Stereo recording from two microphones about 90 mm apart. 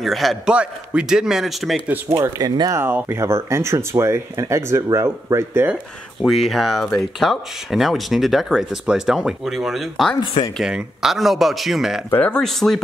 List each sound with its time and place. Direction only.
0.0 s speech: centre (ahead or behind)
0.5 s a man's voice: 10° right (ahead or behind)
2.0 s speech: 25° right (ahead or behind)
6.2 s speech: centre (ahead or behind)
12.2 s speech: 10° left (ahead or behind)